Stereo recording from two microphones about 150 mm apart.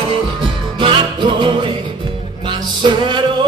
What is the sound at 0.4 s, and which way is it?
Music, 35° right (ahead or behind).